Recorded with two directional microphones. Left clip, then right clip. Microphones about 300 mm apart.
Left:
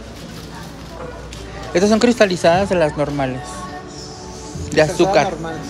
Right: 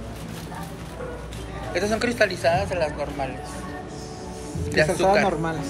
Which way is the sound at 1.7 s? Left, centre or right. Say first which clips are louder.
Left 8 dB; centre.